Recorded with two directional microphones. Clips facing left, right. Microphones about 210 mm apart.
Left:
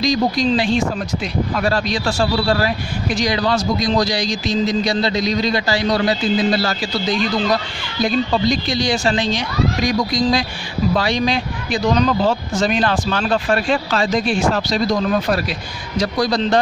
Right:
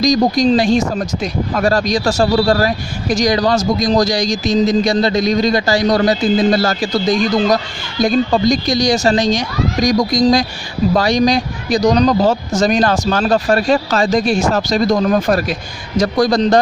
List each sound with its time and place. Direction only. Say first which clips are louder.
0.0 s speech: right 5 dB; 45° right (ahead or behind)